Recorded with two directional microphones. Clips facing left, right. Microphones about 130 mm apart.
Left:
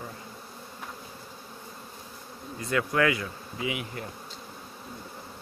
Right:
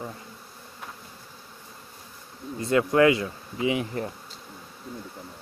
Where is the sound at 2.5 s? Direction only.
25° right (ahead or behind).